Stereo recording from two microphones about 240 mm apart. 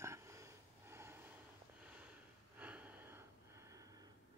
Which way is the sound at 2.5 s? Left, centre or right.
Centre.